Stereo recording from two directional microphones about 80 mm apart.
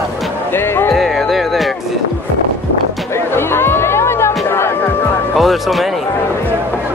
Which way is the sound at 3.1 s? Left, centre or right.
Left.